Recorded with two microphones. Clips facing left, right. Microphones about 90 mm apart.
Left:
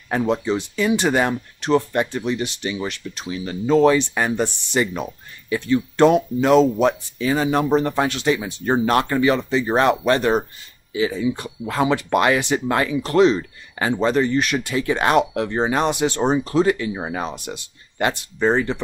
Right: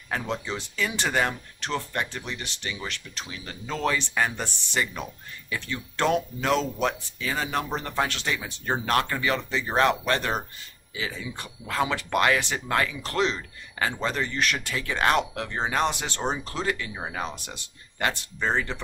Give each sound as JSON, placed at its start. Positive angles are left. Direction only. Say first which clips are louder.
{"t": 0.1, "sound": "speech", "louder": "left 10 dB", "side_deg": 25}